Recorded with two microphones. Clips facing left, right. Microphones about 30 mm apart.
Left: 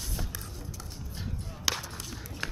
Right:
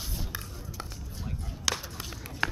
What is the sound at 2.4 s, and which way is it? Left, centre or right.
Run, centre.